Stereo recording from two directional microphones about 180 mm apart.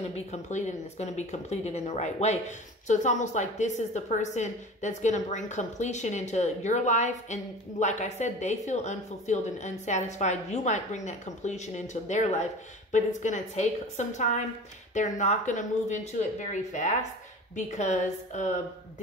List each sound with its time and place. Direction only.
0.1 s speech: 40° left (ahead or behind)